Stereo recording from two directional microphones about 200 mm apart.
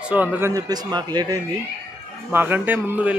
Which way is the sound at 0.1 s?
10° right (ahead or behind).